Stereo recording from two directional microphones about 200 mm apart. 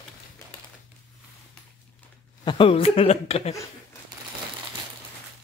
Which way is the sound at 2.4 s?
25° left (ahead or behind).